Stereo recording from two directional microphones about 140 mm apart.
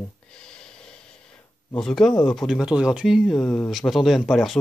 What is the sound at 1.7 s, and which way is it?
Speech, 5° left (ahead or behind).